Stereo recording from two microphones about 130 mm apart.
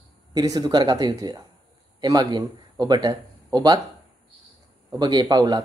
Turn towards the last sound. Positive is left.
turn(degrees=-30)  # may be behind; listen again after turning